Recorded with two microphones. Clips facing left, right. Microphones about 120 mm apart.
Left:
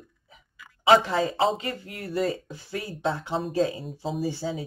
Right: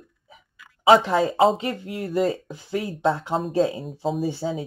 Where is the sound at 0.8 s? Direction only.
30° right (ahead or behind).